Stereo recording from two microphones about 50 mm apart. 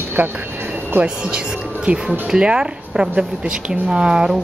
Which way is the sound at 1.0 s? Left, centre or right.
Right.